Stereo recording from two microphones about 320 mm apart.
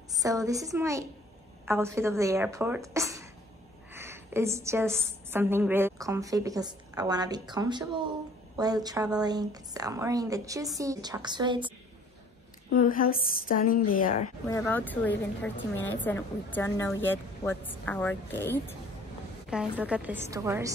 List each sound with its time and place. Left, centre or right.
0.2 s a woman's voice: centre
12.7 s a woman's voice: left
14.6 s a woman's voice: centre